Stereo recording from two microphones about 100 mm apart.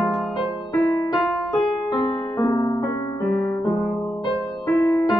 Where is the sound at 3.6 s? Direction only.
25° left (ahead or behind).